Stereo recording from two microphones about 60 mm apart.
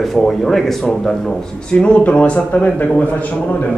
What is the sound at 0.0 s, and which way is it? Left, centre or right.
A man's voice, centre.